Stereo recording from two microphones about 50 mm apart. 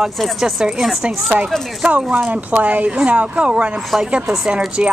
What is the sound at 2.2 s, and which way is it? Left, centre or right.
Speech, right.